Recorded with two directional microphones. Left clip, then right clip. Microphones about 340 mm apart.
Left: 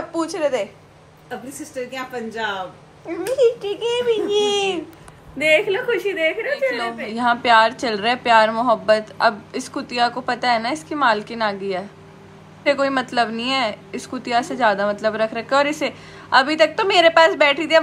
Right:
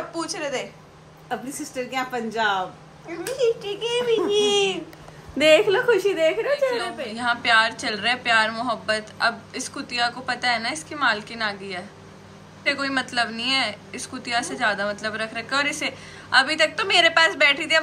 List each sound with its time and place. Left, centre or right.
0.1 s speech: centre
1.9 s speech: right
3.1 s a woman's voice: centre
6.7 s a woman's voice: centre